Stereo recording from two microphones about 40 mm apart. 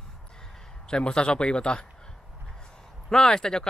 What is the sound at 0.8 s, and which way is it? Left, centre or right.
A man's voice, left.